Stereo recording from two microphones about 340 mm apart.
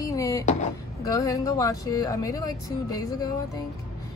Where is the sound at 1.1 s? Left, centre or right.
Centre.